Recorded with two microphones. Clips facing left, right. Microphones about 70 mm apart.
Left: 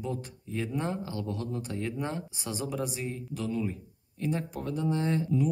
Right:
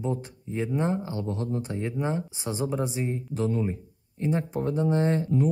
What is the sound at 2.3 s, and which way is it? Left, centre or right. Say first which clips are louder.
Speech: right 5 dB; right.